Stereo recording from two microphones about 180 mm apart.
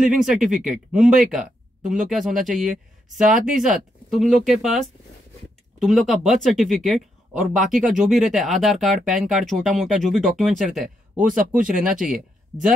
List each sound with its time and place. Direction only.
0.0 s speech: centre (ahead or behind)
11.1 s speech: 45° right (ahead or behind)
11.5 s speech: 5° right (ahead or behind)